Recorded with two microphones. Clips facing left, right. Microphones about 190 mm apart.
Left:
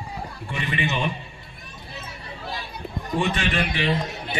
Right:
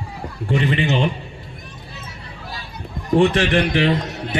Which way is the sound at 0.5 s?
70° right (ahead or behind).